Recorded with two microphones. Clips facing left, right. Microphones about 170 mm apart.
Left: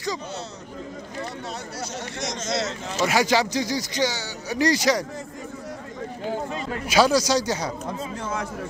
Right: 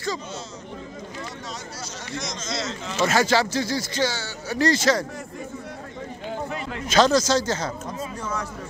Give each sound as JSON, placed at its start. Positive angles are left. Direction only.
{"t": 2.1, "sound": "speech", "side_deg": 65}
{"t": 3.1, "sound": "speech", "side_deg": 15}
{"t": 6.9, "sound": "speech", "side_deg": 10}